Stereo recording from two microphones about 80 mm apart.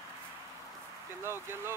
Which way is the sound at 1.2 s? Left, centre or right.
Right.